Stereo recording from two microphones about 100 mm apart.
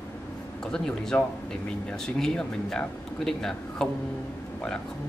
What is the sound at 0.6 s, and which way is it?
Speech, 10° left (ahead or behind).